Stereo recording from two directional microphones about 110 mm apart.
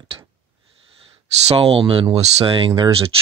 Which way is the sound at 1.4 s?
60° right (ahead or behind).